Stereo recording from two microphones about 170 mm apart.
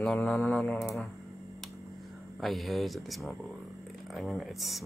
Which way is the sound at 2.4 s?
Centre (ahead or behind).